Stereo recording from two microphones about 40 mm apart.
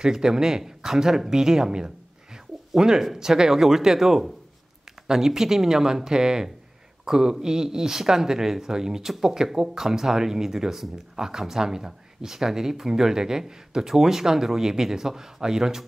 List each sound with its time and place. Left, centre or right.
0.0 s speech: centre